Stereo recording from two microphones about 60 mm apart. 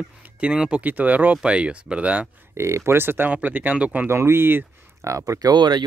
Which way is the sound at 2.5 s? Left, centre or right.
Right.